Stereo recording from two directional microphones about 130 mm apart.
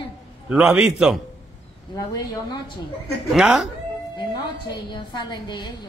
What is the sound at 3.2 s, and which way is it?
Speech, 5° right (ahead or behind).